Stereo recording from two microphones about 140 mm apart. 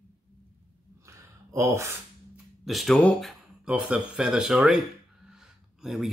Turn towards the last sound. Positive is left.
turn(degrees=0)  # may be behind; listen again after turning